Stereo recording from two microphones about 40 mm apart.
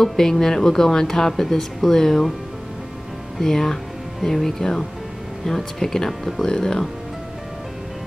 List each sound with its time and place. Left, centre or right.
0.0 s speech: centre
3.3 s speech: centre
6.4 s speech: centre